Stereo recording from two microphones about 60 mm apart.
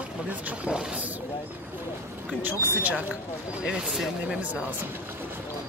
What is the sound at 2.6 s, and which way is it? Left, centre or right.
Speech, right.